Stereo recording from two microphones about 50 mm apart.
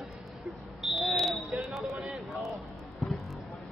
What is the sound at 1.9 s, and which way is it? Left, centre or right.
Music, centre.